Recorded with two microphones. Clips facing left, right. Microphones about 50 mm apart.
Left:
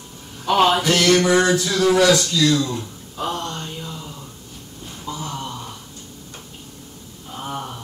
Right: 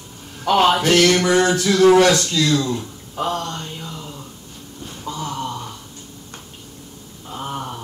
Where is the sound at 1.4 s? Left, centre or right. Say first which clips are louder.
Right 2 dB; right.